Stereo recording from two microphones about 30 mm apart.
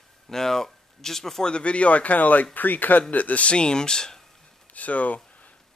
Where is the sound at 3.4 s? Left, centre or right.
Left.